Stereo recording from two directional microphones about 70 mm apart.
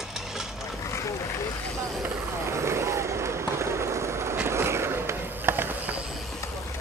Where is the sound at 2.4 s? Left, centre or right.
Right.